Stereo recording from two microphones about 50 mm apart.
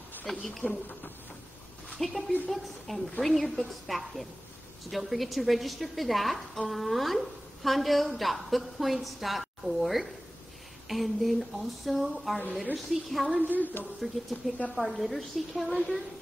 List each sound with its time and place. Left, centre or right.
0.3 s a woman's voice: centre
2.0 s a woman's voice: centre
13.5 s speech: left
14.0 s a woman's voice: centre